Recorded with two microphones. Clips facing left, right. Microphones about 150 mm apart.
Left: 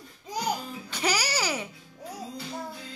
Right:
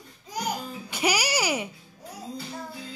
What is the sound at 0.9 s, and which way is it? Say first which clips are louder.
Music: right 3 dB; 10° right (ahead or behind).